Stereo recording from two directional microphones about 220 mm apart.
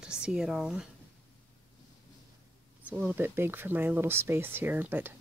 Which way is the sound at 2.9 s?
10° right (ahead or behind).